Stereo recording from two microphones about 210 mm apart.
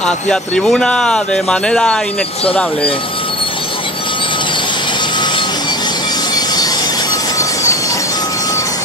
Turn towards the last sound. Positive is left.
turn(degrees=15)  # may be behind; listen again after turning